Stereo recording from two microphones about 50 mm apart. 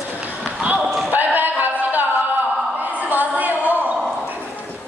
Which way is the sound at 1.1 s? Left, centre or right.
Right.